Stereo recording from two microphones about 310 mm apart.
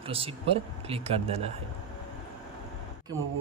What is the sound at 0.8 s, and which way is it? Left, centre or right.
Speech, centre.